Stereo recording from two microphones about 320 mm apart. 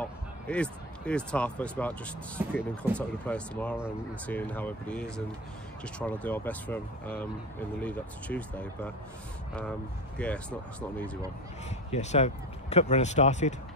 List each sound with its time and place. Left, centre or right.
0.0 s speech: centre
10.1 s speech: centre
11.9 s speech: left